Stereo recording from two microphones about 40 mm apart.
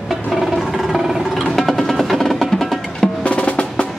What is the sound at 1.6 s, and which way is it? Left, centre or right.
Music, centre.